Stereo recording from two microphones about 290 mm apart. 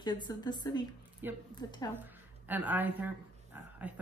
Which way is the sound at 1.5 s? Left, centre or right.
Centre.